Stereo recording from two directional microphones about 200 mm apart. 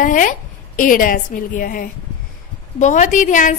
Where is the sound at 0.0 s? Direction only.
40° left (ahead or behind).